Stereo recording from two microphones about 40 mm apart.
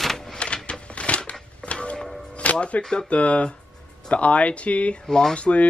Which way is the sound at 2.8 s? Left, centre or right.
Centre.